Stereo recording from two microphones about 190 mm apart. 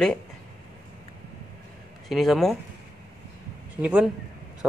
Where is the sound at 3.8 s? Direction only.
5° right (ahead or behind).